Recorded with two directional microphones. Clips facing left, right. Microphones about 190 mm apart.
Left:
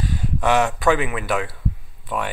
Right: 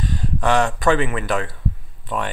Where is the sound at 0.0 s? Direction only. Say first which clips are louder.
Even; 10° left (ahead or behind).